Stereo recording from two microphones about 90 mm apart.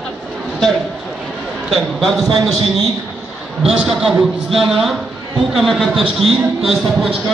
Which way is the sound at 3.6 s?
5° right (ahead or behind).